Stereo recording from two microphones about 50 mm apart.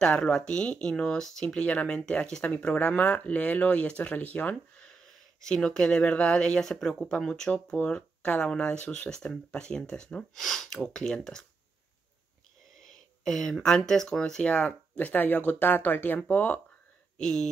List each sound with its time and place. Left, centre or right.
0.2 s speech: centre; by 4.9 s left
5.4 s speech: centre
6.6 s speech: centre
10.3 s speech: centre
12.8 s speech: centre
14.4 s speech: left
17.2 s speech: centre